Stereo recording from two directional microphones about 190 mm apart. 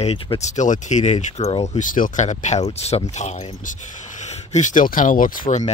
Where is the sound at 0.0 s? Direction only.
35° left (ahead or behind).